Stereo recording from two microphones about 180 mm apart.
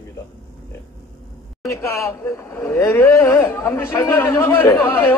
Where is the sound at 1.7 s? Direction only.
15° left (ahead or behind).